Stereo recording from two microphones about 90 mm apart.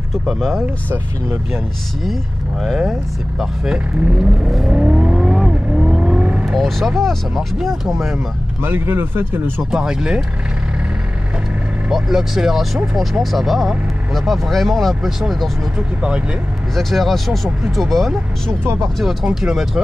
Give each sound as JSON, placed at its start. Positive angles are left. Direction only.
{"t": 0.1, "sound": "speech", "side_deg": 0}
{"t": 2.6, "sound": "speech", "side_deg": 0}
{"t": 4.7, "sound": "vehicle", "side_deg": -10}
{"t": 6.5, "sound": "speech", "side_deg": 0}
{"t": 8.6, "sound": "speech", "side_deg": -25}
{"t": 9.6, "sound": "speech", "side_deg": -5}
{"t": 11.9, "sound": "speech", "side_deg": -5}
{"t": 16.7, "sound": "speech", "side_deg": 0}
{"t": 18.6, "sound": "speech", "side_deg": -30}
{"t": 18.9, "sound": "speech", "side_deg": -5}